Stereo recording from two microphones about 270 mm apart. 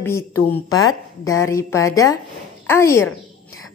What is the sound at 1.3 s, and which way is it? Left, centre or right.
Speech, centre.